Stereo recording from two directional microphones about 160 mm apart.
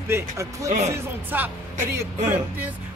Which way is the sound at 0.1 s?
20° right (ahead or behind).